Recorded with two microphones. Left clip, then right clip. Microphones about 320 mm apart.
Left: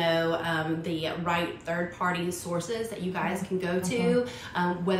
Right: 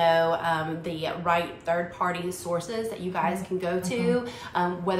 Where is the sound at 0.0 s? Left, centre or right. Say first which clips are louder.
Right 4 dB; centre.